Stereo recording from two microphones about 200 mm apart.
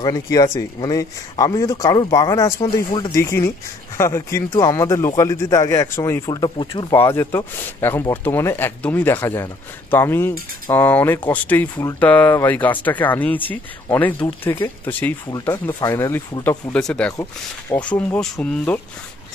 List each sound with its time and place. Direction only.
0.0 s speech: 20° left (ahead or behind)
6.9 s speech: 15° left (ahead or behind)